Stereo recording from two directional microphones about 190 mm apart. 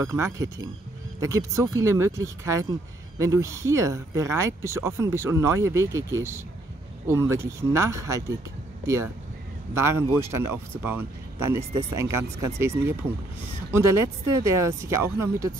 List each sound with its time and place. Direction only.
0.0 s speech: 15° right (ahead or behind)